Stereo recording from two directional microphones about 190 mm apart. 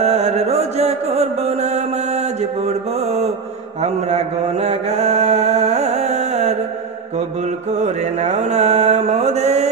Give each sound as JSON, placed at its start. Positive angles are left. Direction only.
{"t": 0.0, "sound": "music", "side_deg": -35}
{"t": 3.8, "sound": "chant", "side_deg": -35}
{"t": 7.2, "sound": "mantra", "side_deg": -35}